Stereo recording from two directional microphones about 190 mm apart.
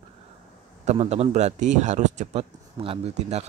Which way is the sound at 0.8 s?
35° right (ahead or behind).